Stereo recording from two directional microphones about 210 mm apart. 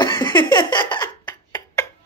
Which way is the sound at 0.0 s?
20° left (ahead or behind).